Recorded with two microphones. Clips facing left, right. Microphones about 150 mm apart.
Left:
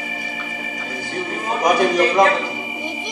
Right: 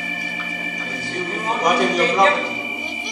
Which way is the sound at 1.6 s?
50° left (ahead or behind).